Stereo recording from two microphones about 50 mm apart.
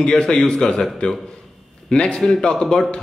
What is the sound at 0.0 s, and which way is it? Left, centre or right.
Speech, centre.